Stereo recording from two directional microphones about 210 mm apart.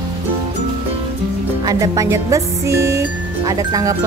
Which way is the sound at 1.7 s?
15° right (ahead or behind).